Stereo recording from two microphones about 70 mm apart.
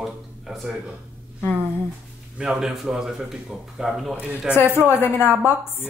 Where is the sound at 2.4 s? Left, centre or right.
Centre.